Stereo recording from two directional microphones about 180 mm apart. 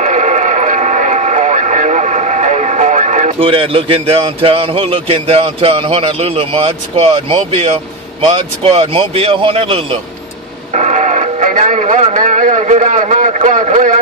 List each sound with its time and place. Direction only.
0.0 s speech: 45° right (ahead or behind)
10.7 s radio: 40° right (ahead or behind)